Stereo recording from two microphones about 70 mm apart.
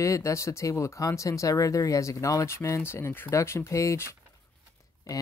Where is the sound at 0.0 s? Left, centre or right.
Left.